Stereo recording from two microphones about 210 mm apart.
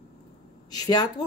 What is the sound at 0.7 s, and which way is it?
Speech, 20° left (ahead or behind).